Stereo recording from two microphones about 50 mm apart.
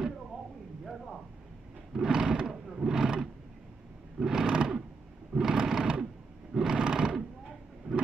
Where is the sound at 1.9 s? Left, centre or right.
Centre.